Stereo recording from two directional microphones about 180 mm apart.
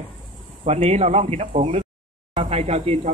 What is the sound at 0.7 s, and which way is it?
A man's voice, 35° right (ahead or behind).